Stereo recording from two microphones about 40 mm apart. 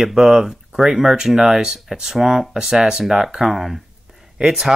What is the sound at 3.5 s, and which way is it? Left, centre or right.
Speech, centre.